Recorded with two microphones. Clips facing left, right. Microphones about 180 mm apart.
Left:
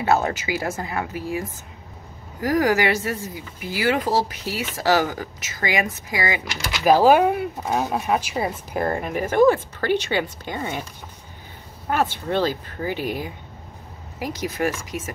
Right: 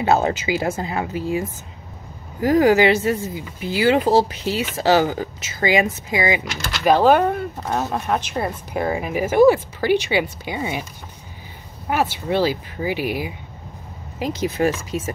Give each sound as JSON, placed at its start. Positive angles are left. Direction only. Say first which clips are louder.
{"t": 0.0, "sound": "speech", "louder": "right 3 dB", "side_deg": -20}
{"t": 2.4, "sound": "speech", "louder": "right 5 dB", "side_deg": -25}
{"t": 6.6, "sound": "speech", "louder": "even", "side_deg": 5}
{"t": 11.9, "sound": "speech", "louder": "right 2 dB", "side_deg": -10}
{"t": 14.2, "sound": "speech", "louder": "right 4 dB", "side_deg": -25}